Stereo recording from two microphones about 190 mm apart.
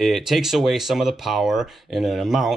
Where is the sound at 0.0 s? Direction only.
Centre (ahead or behind).